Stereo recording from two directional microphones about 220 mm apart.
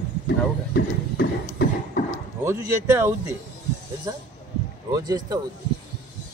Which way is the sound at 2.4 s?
10° right (ahead or behind).